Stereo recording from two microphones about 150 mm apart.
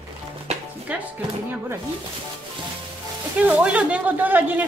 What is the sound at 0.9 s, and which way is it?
Speech, 10° right (ahead or behind).